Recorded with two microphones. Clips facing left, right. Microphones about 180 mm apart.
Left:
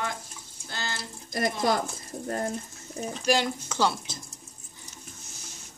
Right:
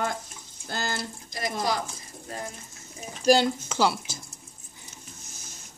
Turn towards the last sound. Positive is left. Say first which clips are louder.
# right 2 dB
turn(degrees=-5)  # may be behind; listen again after turning